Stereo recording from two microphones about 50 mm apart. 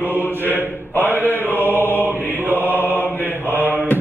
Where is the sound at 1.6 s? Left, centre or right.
Right.